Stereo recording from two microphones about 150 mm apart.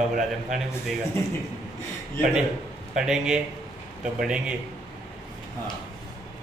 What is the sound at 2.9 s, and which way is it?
A man's voice, 5° right (ahead or behind).